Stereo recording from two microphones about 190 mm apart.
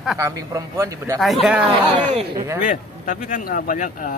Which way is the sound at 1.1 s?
Centre (ahead or behind).